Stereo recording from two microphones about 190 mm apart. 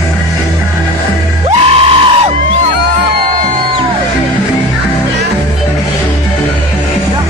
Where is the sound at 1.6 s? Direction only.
30° right (ahead or behind).